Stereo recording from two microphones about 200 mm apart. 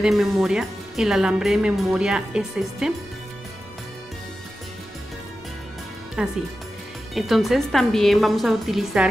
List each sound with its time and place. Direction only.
0.0 s a woman's voice: centre (ahead or behind)
6.2 s a woman's voice: 5° right (ahead or behind)